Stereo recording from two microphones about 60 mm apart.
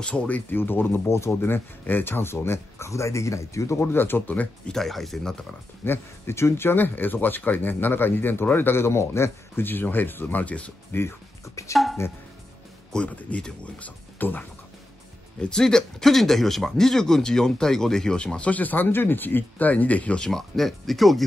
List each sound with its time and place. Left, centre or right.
0.0 s speech: centre
0.5 s speech: left
3.8 s speech: left
4.6 s speech: centre
5.9 s speech: left
9.7 s speech: left
10.4 s speech: left
10.9 s speech: left
11.7 s speech: centre
12.9 s speech: left
15.4 s speech: centre
20.2 s speech: centre